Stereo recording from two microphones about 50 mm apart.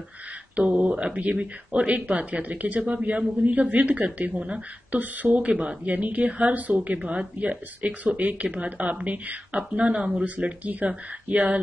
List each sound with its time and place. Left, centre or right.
0.6 s a woman's voice: right